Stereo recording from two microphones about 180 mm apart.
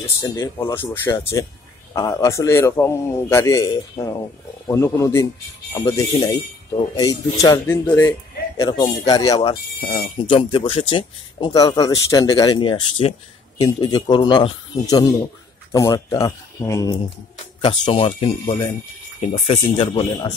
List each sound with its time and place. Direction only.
0.0 s a man's voice: 15° left (ahead or behind)
17.6 s speech: 30° left (ahead or behind)